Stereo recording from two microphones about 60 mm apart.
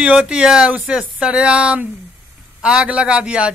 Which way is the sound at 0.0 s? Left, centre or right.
Centre.